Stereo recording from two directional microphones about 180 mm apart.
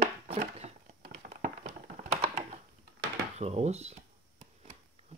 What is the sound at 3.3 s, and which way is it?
Speech, 35° right (ahead or behind).